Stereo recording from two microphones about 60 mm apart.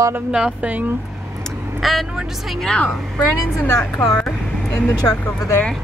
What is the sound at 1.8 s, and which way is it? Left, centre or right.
Speech, centre.